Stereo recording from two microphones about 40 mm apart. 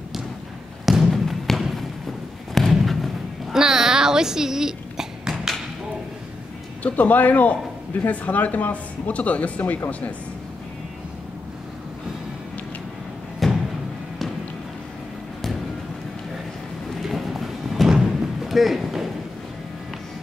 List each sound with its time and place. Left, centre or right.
0.8 s thump: centre
2.7 s thump: centre
3.5 s a sound: centre
6.8 s speech: left
13.4 s music: centre
17.0 s music: centre
17.8 s thump: centre